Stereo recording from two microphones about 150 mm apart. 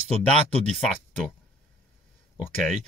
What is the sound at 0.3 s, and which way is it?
Speech, 5° left (ahead or behind).